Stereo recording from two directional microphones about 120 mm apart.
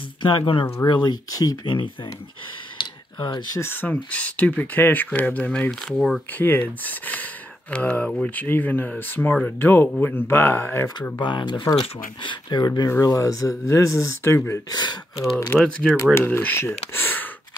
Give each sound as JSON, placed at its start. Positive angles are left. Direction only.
{"t": 0.2, "sound": "speech", "side_deg": 45}
{"t": 2.8, "sound": "clicking", "side_deg": 40}
{"t": 3.5, "sound": "speech", "side_deg": 20}
{"t": 6.3, "sound": "speech", "side_deg": 15}
{"t": 11.1, "sound": "speech", "side_deg": 40}
{"t": 14.8, "sound": "speech", "side_deg": 35}
{"t": 15.5, "sound": "speech", "side_deg": 5}
{"t": 16.9, "sound": "a sound", "side_deg": 15}